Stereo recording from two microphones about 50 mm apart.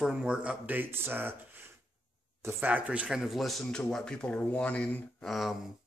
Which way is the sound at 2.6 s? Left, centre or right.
Right.